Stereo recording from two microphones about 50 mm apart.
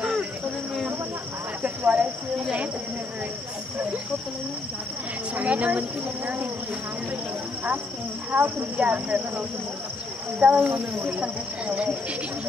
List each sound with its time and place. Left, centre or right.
1.6 s cricket: right
5.3 s speech: right
8.3 s a woman's voice: right
10.4 s speech: right